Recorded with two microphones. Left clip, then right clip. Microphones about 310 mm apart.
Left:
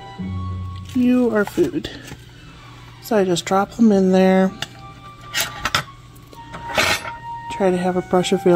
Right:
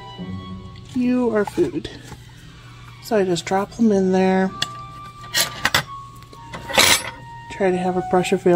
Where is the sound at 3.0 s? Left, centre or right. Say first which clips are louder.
Left 1 dB; centre.